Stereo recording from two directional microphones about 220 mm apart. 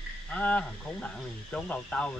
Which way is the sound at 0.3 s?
5° left (ahead or behind).